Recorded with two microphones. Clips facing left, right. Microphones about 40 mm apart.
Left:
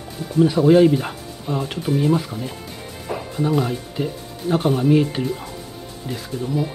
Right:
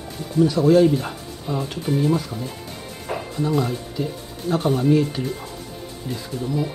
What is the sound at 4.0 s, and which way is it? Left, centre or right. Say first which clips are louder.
Speech: left 2 dB; left.